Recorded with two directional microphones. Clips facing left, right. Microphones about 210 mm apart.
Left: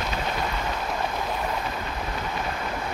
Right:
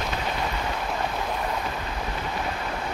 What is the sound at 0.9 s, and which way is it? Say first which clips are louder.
Train: even; centre (ahead or behind).